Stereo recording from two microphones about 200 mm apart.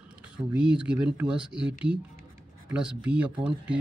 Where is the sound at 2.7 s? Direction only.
5° right (ahead or behind).